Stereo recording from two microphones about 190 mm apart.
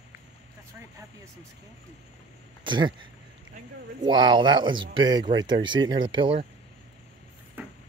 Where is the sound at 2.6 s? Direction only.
25° right (ahead or behind).